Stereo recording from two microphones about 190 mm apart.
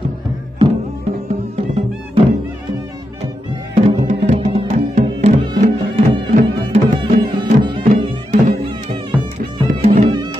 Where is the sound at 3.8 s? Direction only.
35° right (ahead or behind).